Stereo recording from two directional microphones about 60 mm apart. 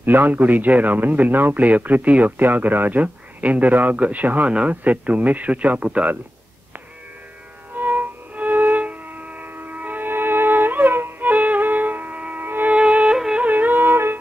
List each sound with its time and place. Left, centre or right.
0.0 s speech: right
7.7 s music: right
12.7 s music: centre; by 14.1 s right